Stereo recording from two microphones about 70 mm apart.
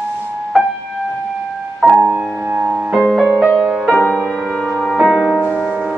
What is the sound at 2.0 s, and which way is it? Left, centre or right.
Music, right.